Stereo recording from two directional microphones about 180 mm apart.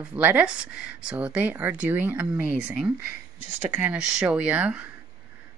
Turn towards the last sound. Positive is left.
turn(degrees=-10)  # may be behind; listen again after turning